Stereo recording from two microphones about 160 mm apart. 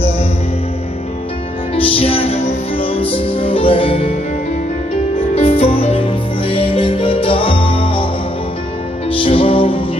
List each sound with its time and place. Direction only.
1.8 s music: 35° left (ahead or behind)
5.3 s music: 40° left (ahead or behind)
9.2 s music: 35° left (ahead or behind)